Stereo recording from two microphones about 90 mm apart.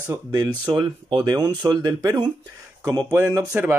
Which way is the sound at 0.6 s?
60° right (ahead or behind).